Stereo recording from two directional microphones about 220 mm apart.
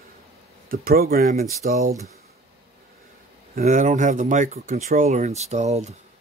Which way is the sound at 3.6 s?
35° right (ahead or behind).